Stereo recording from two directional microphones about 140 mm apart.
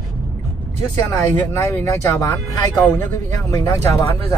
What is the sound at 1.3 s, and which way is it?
Speech, 20° left (ahead or behind).